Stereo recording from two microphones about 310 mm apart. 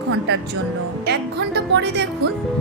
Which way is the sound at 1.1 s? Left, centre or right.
Right.